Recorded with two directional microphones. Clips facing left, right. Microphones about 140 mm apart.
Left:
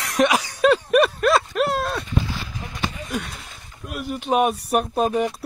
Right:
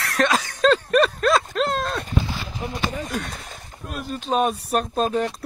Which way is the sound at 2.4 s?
25° right (ahead or behind).